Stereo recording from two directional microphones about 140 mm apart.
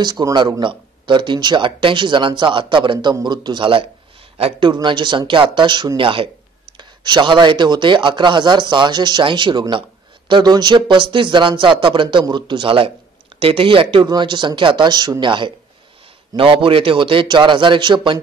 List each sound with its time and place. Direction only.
0.0 s speech: 30° right (ahead or behind)